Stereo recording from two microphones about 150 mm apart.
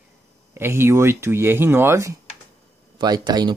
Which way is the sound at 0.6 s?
15° right (ahead or behind).